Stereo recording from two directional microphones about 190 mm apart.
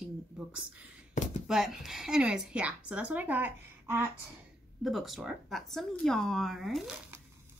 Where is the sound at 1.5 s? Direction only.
Centre (ahead or behind).